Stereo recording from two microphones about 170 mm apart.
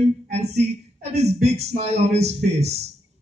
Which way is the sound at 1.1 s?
40° right (ahead or behind).